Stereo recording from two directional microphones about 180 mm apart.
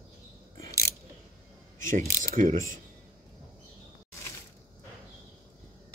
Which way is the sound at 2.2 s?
45° right (ahead or behind).